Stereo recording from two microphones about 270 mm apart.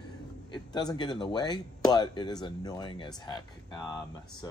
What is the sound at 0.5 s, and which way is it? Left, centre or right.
Speech, centre.